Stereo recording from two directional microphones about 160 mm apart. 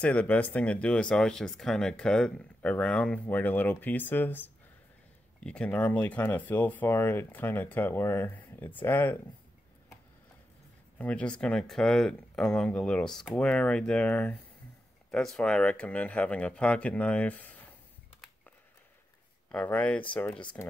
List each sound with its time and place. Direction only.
0.0 s speech: 10° left (ahead or behind)
11.0 s speech: 10° left (ahead or behind)
19.5 s speech: 10° left (ahead or behind)